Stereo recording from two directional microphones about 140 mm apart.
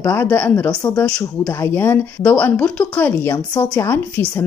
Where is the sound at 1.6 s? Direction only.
15° left (ahead or behind).